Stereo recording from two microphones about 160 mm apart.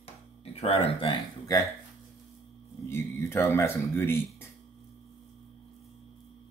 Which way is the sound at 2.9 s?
15° left (ahead or behind).